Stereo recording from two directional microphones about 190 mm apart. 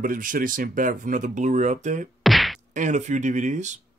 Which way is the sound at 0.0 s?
45° right (ahead or behind).